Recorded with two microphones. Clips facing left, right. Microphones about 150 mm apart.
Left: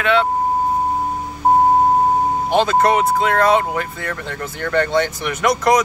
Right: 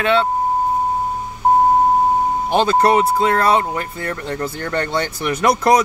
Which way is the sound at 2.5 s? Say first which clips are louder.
Right 1 dB; 35° right (ahead or behind).